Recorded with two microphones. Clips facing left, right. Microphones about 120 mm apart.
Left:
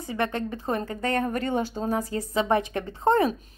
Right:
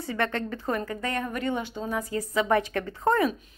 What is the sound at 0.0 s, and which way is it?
A woman's voice, 20° left (ahead or behind).